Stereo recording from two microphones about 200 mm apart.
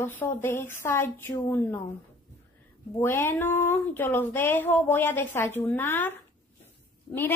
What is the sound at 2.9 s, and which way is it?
Speech, 10° left (ahead or behind).